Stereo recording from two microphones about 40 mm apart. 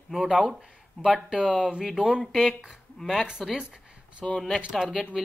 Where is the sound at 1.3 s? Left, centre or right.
Centre.